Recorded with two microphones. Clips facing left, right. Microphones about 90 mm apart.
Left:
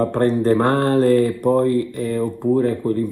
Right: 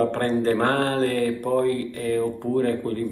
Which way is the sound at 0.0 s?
20° left (ahead or behind).